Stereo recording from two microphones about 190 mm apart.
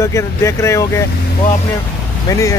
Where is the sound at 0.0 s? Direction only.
15° left (ahead or behind).